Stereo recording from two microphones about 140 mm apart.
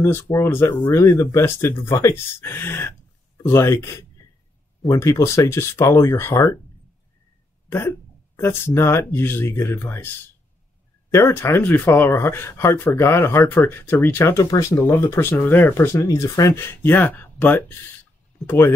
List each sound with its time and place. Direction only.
0.0 s speech: 15° left (ahead or behind)
8.4 s speech: 20° left (ahead or behind)
11.1 s speech: 20° left (ahead or behind)